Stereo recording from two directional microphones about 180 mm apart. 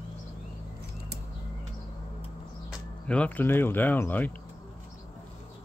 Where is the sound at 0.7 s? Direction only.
65° right (ahead or behind).